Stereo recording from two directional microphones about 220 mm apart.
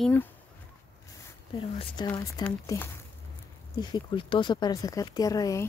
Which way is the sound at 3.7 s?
20° left (ahead or behind).